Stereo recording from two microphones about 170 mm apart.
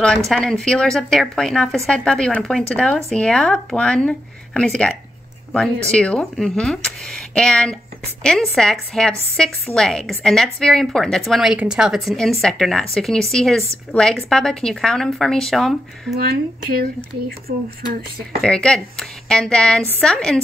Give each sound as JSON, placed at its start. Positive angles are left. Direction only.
{"t": 0.3, "sound": "a woman's voice", "side_deg": 5}
{"t": 16.2, "sound": "speech", "side_deg": -60}
{"t": 18.4, "sound": "a woman's voice", "side_deg": 5}